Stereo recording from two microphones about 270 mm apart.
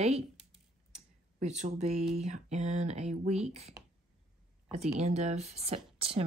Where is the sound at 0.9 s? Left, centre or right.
Right.